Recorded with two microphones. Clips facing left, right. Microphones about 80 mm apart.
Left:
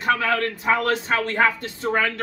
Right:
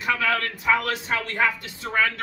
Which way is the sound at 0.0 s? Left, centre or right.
Left.